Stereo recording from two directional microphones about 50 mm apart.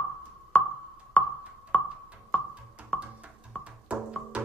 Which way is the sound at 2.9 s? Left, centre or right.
Centre.